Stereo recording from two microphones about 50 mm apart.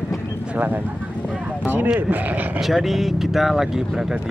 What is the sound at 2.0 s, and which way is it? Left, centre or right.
Speech, right.